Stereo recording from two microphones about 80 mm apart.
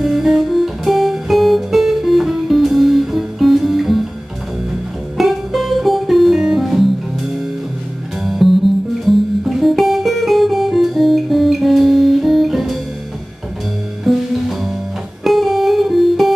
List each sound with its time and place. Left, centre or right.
0.0 s guitar: centre
5.1 s music: centre
14.0 s music: centre